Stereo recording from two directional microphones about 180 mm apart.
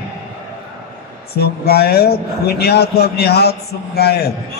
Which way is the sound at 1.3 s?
60° left (ahead or behind).